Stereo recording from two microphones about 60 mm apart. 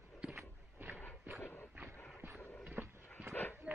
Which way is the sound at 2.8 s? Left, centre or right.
Right.